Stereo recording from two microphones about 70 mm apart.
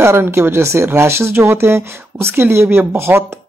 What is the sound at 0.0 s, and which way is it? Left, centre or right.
Speech, right.